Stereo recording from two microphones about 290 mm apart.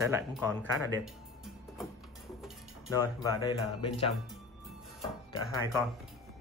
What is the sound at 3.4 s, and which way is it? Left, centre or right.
Speech, centre.